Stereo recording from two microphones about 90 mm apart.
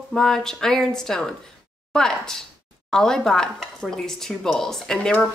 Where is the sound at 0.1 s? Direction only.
5° left (ahead or behind).